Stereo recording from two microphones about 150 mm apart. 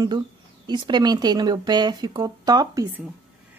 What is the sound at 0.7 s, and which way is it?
Speech, 30° right (ahead or behind).